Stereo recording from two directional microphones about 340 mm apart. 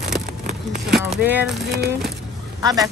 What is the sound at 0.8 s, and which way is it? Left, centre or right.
Speech, centre.